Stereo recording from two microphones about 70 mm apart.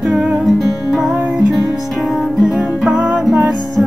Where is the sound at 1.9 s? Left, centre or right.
Centre.